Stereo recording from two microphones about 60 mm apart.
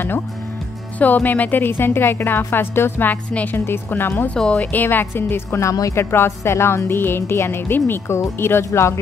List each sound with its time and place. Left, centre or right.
0.9 s speech: left
3.1 s speech: left
4.3 s speech: centre
4.7 s speech: left
5.6 s speech: left
5.9 s speech: left